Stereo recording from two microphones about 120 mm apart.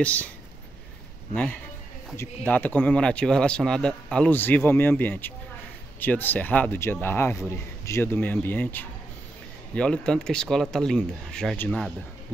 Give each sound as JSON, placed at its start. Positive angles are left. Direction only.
{"t": 0.0, "sound": "a man's voice", "side_deg": 10}
{"t": 2.1, "sound": "a man's voice", "side_deg": 15}
{"t": 11.5, "sound": "a man's voice", "side_deg": 15}